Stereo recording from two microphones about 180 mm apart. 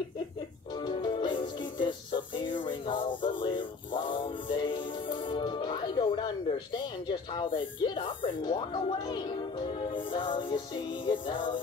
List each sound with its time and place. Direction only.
0.8 s music: 25° left (ahead or behind)